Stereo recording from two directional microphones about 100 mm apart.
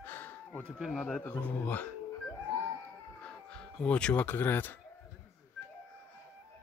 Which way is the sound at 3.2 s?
10° left (ahead or behind).